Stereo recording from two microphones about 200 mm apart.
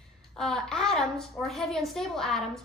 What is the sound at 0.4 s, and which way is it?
A woman's voice, centre (ahead or behind).